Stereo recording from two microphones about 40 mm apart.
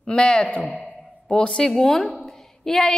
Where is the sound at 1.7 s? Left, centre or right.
Centre.